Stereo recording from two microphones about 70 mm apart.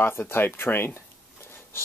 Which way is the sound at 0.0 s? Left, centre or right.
Left.